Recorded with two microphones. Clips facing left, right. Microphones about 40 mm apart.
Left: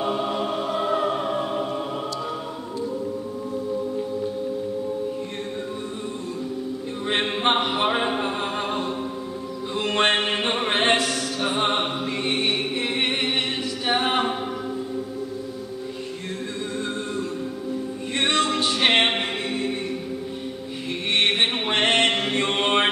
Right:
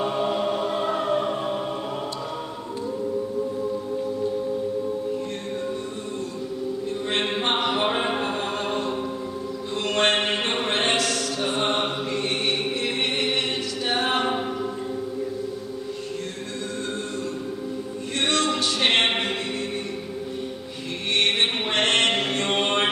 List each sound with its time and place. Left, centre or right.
0.0 s music: centre
7.1 s a capella: centre
8.2 s music: centre
9.8 s music: centre
13.8 s a capella: centre
18.1 s music: centre
21.1 s mantra: centre